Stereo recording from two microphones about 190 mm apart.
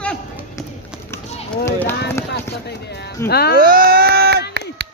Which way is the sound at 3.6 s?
50° right (ahead or behind).